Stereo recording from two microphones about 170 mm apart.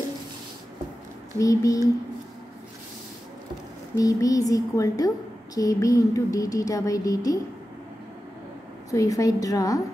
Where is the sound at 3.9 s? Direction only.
20° left (ahead or behind).